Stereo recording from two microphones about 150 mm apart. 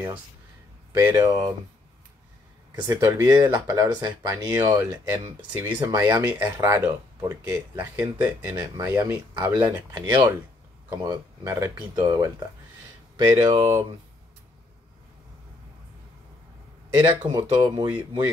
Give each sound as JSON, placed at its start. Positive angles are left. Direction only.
{"t": 1.0, "sound": "speech", "side_deg": -20}
{"t": 2.9, "sound": "speech", "side_deg": -20}
{"t": 17.0, "sound": "speech", "side_deg": -20}